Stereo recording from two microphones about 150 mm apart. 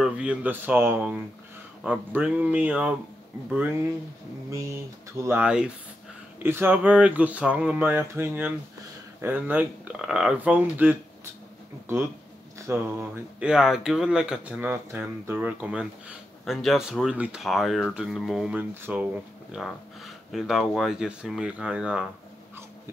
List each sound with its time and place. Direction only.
0.0 s speech: 5° right (ahead or behind)
4.5 s a sound: 20° right (ahead or behind)
5.2 s speech: 10° right (ahead or behind)
12.5 s speech: 15° right (ahead or behind)